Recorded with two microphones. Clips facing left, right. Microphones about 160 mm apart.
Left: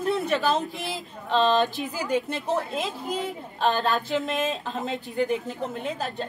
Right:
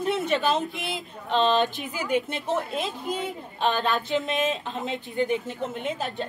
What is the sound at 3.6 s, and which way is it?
Speech, centre (ahead or behind).